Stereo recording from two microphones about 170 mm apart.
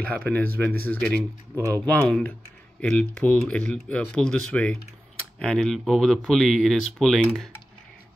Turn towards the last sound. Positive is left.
turn(degrees=0)  # may be behind; listen again after turning